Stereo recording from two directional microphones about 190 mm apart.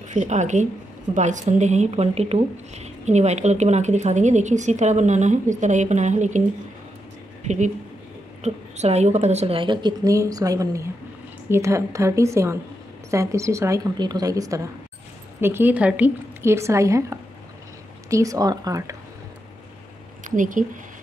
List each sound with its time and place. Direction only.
0.1 s speech: 40° right (ahead or behind)
7.4 s a woman's voice: 40° right (ahead or behind); by 18.9 s 20° right (ahead or behind)
20.2 s speech: 45° right (ahead or behind)